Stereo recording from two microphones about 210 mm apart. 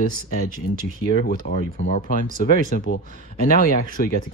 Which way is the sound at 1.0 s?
40° left (ahead or behind).